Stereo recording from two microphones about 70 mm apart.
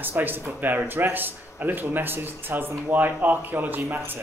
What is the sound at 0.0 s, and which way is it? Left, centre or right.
A man's voice, right.